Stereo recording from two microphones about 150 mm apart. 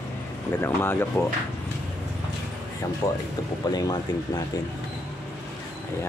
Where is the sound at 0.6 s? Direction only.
15° left (ahead or behind).